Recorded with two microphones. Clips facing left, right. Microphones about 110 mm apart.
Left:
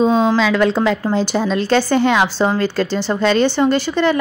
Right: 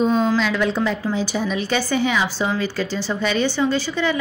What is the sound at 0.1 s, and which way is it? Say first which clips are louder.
A woman's voice: left 4 dB; 85° left.